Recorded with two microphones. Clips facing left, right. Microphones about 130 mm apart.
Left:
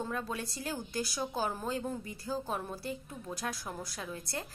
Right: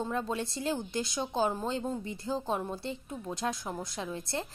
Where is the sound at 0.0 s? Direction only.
25° right (ahead or behind).